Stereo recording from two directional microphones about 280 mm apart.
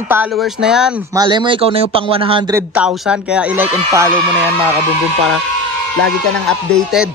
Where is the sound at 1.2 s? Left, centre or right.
Centre.